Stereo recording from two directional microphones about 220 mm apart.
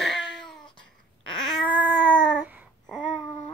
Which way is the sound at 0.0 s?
Centre (ahead or behind).